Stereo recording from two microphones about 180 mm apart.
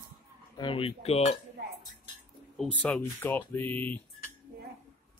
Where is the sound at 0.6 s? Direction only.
30° left (ahead or behind).